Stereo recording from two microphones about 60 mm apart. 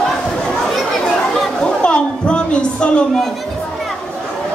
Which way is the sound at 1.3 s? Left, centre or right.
Centre.